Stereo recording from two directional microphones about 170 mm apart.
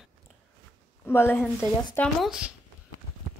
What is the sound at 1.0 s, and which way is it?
A woman's voice, 15° left (ahead or behind).